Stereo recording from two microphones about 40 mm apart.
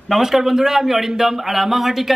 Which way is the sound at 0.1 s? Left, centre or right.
Centre.